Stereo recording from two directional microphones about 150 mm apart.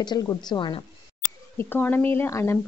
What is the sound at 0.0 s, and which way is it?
Speech, 25° left (ahead or behind).